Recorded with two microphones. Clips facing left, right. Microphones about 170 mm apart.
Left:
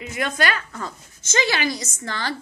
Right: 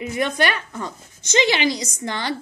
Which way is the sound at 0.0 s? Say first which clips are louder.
Right 3 dB; 20° right (ahead or behind).